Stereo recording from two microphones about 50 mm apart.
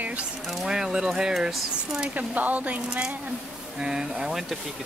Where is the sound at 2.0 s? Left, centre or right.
Right.